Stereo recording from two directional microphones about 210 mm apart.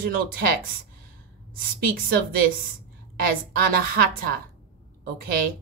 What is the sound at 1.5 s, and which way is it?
Speech, 45° right (ahead or behind).